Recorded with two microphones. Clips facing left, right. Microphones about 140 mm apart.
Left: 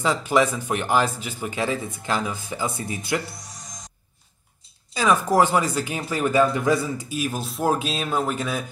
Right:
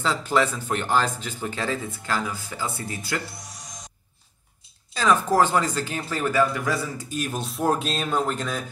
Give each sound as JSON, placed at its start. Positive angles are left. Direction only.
{"t": 0.0, "sound": "speech", "side_deg": 15}
{"t": 4.9, "sound": "speech", "side_deg": 10}
{"t": 7.1, "sound": "speech", "side_deg": 5}